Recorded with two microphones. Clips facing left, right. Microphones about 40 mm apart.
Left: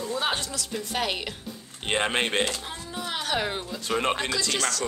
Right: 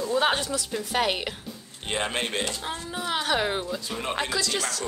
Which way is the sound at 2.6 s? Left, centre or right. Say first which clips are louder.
Right 3 dB; centre.